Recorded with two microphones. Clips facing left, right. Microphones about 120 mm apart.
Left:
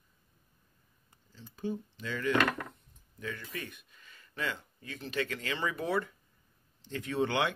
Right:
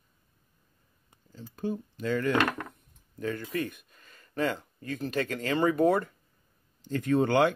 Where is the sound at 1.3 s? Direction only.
50° right (ahead or behind).